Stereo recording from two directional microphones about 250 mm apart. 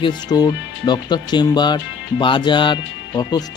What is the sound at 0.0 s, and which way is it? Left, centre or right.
Speech, centre.